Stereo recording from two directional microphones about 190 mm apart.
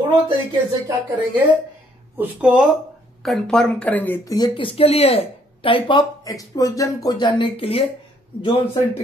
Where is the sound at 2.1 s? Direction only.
10° right (ahead or behind); by 4.3 s 10° left (ahead or behind).